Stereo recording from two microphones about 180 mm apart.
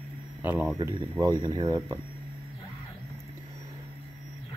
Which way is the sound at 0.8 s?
25° right (ahead or behind).